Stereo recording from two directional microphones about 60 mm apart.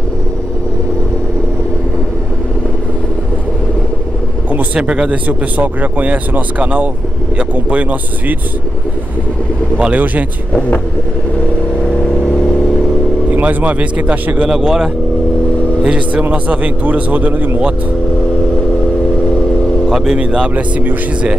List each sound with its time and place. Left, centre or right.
4.7 s speech: centre
9.8 s speech: right
11.8 s vehicle: centre
13.3 s speech: right
14.5 s speech: centre; by 17.5 s right
19.9 s speech: centre
20.2 s speech: centre